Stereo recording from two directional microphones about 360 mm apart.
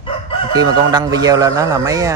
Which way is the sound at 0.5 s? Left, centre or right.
Centre.